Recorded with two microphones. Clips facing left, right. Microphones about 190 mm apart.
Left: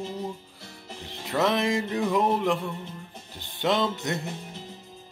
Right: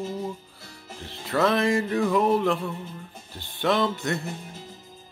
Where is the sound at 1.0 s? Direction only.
20° left (ahead or behind).